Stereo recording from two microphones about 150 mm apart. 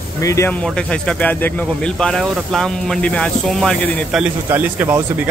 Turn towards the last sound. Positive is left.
turn(degrees=-15)  # may be behind; listen again after turning